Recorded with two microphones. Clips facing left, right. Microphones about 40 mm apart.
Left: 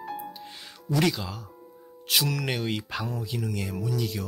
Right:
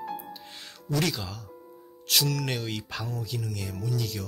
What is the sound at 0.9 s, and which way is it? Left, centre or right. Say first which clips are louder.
Speech: left 3 dB; centre.